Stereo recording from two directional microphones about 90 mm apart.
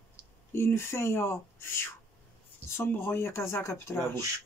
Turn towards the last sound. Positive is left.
turn(degrees=30)  # may be behind; listen again after turning